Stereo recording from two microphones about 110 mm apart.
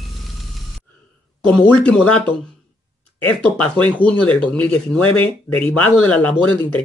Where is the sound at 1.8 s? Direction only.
10° left (ahead or behind).